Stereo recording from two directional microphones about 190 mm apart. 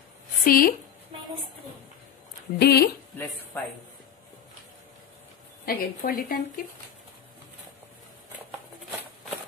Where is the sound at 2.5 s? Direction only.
55° left (ahead or behind).